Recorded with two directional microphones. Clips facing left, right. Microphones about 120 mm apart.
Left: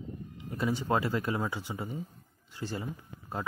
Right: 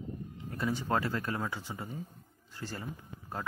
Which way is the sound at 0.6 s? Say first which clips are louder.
Left 2 dB; 15° left (ahead or behind).